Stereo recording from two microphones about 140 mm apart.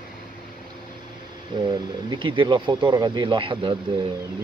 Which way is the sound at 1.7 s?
35° right (ahead or behind).